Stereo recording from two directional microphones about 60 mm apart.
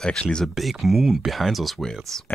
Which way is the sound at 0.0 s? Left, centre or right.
Centre.